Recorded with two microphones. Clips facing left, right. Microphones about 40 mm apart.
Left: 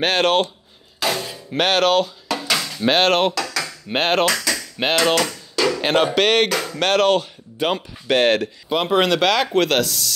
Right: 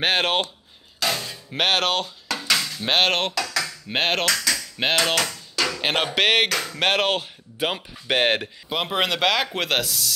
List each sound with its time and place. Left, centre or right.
0.0 s speech: centre
0.9 s music: centre
2.2 s dishes: centre
2.9 s a sound: centre
5.8 s music: centre
6.1 s speech: centre
6.5 s music: centre
6.8 s speech: centre
8.6 s speech: centre